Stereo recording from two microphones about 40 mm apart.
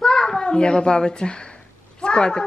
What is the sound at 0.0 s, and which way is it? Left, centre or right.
A child's voice, centre.